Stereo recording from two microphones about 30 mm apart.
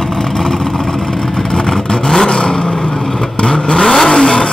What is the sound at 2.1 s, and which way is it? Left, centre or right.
Vehicle, left.